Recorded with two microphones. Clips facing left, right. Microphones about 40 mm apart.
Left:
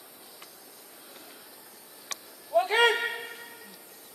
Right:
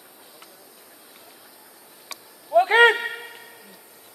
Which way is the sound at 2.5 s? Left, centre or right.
Right.